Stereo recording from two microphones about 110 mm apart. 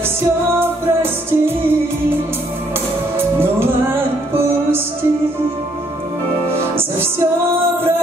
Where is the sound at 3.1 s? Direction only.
20° right (ahead or behind).